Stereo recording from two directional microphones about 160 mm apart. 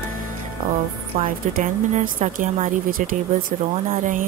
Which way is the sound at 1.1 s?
55° right (ahead or behind).